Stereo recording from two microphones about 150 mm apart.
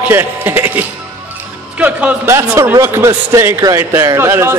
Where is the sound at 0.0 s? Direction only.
15° right (ahead or behind).